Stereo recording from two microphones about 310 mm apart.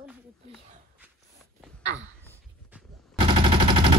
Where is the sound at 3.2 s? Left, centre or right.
Centre.